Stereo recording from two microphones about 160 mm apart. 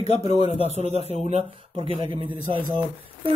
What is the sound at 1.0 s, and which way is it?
Speech, 40° right (ahead or behind).